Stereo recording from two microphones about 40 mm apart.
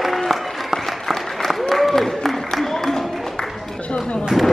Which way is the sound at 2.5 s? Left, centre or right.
Centre.